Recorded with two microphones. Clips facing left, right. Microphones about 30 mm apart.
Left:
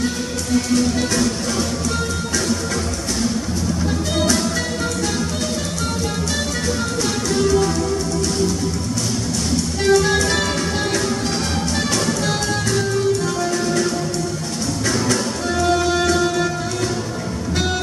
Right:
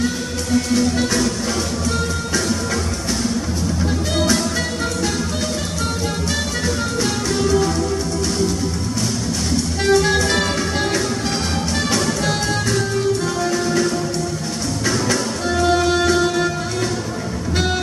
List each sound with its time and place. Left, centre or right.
0.7 s music: centre
3.8 s music: centre
9.8 s music: centre
15.6 s music: centre